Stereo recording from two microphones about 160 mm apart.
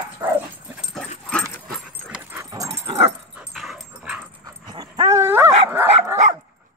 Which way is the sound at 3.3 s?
Centre (ahead or behind).